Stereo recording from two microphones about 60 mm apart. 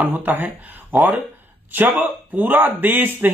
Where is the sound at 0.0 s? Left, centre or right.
Right.